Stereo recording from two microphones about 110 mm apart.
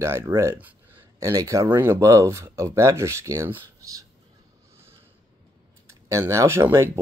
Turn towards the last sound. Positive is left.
turn(degrees=-25)  # may be behind; listen again after turning